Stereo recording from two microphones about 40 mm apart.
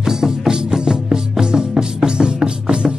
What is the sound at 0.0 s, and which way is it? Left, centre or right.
Music, centre.